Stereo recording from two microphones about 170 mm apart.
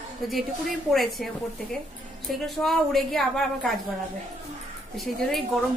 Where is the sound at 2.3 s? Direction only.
Centre (ahead or behind).